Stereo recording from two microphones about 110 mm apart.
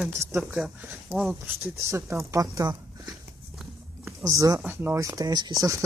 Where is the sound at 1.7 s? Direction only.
25° right (ahead or behind).